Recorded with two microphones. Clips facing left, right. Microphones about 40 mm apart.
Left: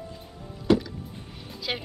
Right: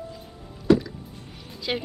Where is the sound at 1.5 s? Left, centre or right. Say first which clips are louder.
Right 3 dB; centre.